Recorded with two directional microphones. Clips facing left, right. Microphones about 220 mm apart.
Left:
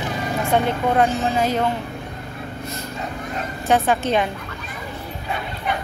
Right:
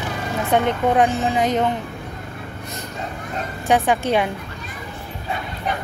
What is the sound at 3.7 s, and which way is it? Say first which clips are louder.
Speech: right 1 dB; 15° right (ahead or behind).